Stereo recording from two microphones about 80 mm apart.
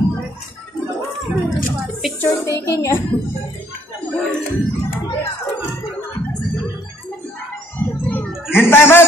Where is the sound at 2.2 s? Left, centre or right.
Left.